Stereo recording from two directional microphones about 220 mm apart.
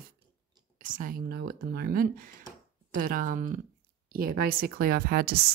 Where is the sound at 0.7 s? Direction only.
40° right (ahead or behind).